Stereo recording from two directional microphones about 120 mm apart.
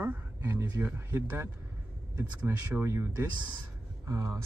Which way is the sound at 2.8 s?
20° right (ahead or behind).